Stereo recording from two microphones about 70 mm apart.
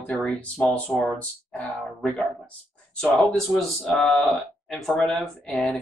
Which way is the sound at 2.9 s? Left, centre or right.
Centre.